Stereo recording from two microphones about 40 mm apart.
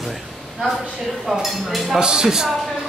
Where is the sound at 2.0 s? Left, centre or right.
Centre.